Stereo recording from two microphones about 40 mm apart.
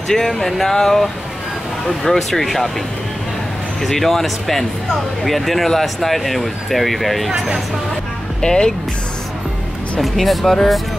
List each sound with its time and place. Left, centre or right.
0.1 s speech: centre
3.8 s speech: centre
7.3 s speech: centre
8.4 s speech: centre
10.0 s speech: centre